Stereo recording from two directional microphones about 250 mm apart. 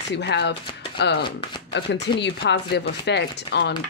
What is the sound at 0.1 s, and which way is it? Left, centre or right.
Speech, left.